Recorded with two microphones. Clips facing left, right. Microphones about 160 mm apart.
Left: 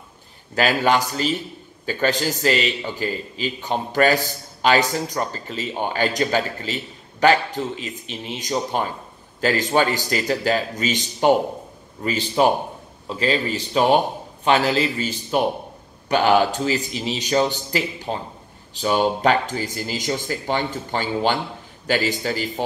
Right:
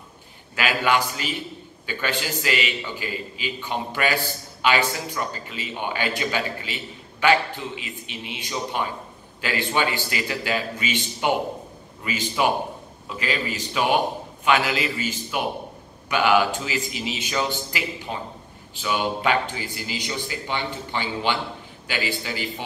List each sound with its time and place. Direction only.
0.6 s a man's voice: 40° left (ahead or behind)